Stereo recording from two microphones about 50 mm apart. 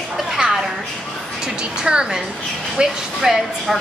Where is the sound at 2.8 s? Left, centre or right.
Centre.